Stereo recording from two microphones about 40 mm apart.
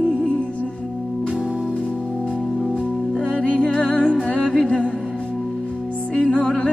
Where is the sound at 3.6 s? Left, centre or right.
Left.